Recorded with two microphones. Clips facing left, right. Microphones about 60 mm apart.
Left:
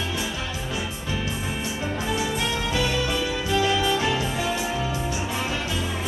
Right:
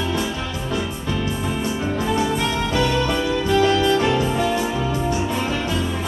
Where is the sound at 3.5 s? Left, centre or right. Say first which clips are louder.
Right 5 dB; centre.